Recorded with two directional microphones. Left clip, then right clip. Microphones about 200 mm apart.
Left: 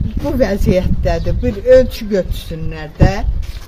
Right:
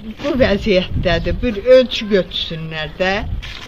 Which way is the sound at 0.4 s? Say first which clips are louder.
Right 1 dB; 20° left (ahead or behind).